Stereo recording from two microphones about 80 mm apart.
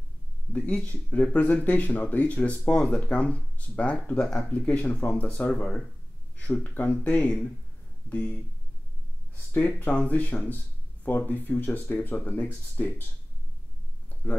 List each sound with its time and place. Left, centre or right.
0.5 s speech: centre
4.5 s speech: left
5.5 s speech: centre
6.3 s speech: centre